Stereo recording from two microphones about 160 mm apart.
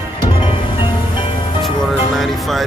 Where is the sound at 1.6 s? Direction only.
Centre (ahead or behind).